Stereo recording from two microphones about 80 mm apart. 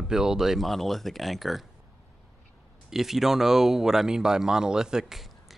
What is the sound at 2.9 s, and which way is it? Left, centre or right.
Speech, centre.